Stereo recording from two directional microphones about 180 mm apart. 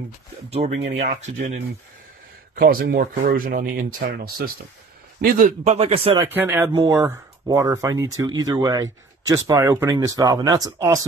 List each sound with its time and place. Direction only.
0.5 s a man's voice: 35° right (ahead or behind)
2.6 s a man's voice: 50° right (ahead or behind); by 6.1 s 35° right (ahead or behind)
6.3 s speech: 10° right (ahead or behind)
6.7 s speech: 25° right (ahead or behind)